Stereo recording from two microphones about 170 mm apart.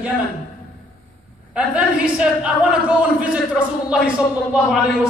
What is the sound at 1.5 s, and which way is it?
A man's voice, 5° right (ahead or behind).